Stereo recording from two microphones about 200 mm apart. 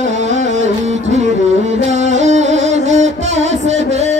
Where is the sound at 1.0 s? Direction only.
35° right (ahead or behind).